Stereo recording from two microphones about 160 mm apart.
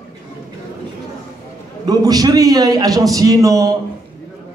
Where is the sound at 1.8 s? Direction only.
25° right (ahead or behind).